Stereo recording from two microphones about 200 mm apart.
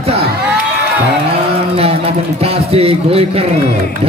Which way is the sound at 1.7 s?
30° right (ahead or behind).